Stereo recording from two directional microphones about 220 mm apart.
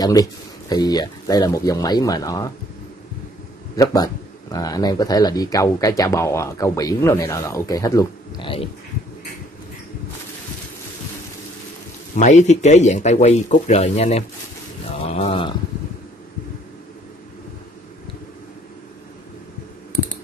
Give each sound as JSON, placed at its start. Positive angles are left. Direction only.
{"t": 0.0, "sound": "speech", "side_deg": 15}
{"t": 3.7, "sound": "speech", "side_deg": 15}
{"t": 12.2, "sound": "speech", "side_deg": 30}